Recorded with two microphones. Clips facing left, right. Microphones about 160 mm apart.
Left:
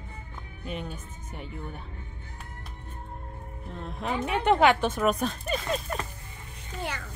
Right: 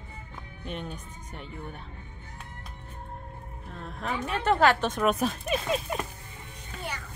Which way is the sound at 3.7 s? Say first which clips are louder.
Left 2 dB; 20° left (ahead or behind).